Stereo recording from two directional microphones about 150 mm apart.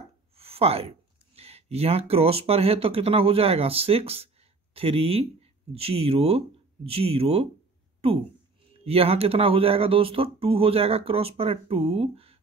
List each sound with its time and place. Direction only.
0.4 s a sound: 40° right (ahead or behind)
1.3 s speech: 45° right (ahead or behind)
8.8 s speech: 40° right (ahead or behind)